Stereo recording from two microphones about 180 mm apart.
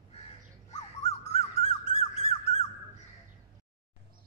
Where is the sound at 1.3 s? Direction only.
35° left (ahead or behind).